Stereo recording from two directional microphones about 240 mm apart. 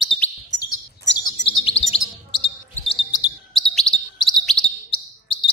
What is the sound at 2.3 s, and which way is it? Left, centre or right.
Basketball bounce, left.